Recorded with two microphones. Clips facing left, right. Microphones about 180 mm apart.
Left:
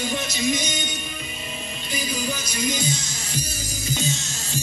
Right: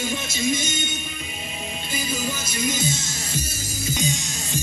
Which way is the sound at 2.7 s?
25° right (ahead or behind).